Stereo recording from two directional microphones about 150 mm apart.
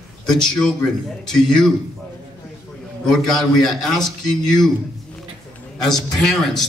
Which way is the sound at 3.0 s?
Centre (ahead or behind).